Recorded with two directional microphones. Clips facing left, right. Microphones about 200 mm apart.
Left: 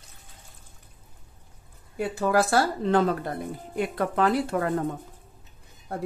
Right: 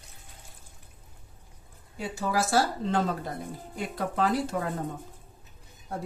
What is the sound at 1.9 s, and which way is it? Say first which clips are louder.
Speech: left 6 dB; 55° left (ahead or behind).